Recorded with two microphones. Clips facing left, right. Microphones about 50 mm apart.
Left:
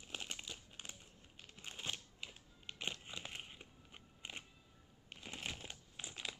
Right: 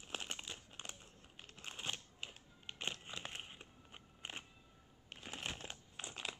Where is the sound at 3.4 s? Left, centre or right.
Centre.